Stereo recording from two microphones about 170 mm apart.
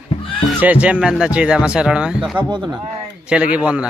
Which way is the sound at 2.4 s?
25° right (ahead or behind).